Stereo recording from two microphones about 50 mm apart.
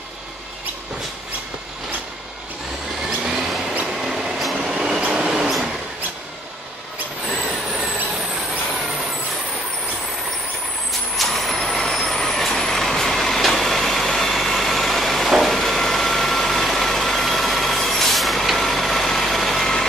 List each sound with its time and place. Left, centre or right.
3.3 s a sound: centre
3.8 s train: centre
4.6 s train: centre
11.1 s vehicle: centre